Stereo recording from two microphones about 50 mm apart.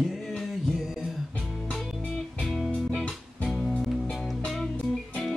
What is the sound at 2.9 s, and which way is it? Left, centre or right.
Music, centre.